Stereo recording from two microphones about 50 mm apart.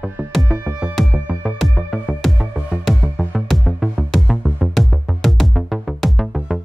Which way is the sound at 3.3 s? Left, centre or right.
Centre.